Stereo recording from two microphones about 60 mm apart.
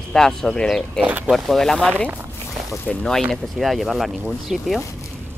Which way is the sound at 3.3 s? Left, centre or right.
Centre.